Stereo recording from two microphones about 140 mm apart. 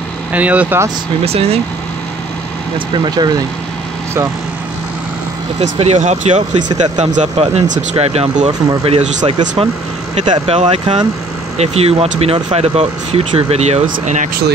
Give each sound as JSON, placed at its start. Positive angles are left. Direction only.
{"t": 0.3, "sound": "speech", "side_deg": -10}
{"t": 1.2, "sound": "speech", "side_deg": -45}
{"t": 2.9, "sound": "speech", "side_deg": -30}
{"t": 5.6, "sound": "speech", "side_deg": -50}
{"t": 10.3, "sound": "speech", "side_deg": -40}